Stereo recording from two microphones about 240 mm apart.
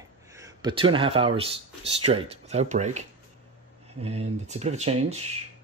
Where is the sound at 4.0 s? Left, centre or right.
Right.